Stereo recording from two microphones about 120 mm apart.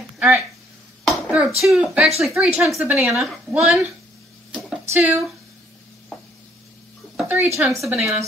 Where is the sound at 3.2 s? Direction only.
5° right (ahead or behind).